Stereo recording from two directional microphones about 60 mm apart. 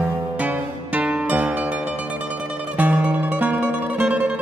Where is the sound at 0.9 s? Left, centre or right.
Right.